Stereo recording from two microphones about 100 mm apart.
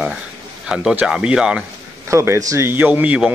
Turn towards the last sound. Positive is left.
turn(degrees=-15)  # may be behind; listen again after turning